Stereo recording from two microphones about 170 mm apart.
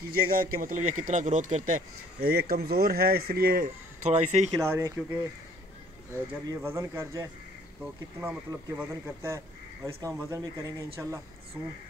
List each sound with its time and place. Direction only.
0.1 s speech: 55° right (ahead or behind)
2.1 s speech: 65° right (ahead or behind); by 4.5 s 45° right (ahead or behind)
4.6 s speech: 15° right (ahead or behind)